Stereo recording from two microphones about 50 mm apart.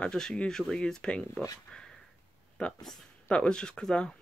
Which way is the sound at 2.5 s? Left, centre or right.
Centre.